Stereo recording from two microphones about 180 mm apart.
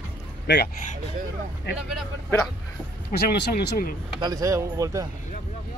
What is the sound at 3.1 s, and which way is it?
Speech, 65° left (ahead or behind).